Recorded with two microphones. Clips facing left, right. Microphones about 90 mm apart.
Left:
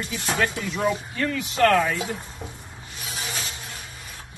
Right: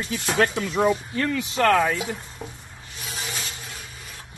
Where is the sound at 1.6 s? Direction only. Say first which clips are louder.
Even; 10° right (ahead or behind).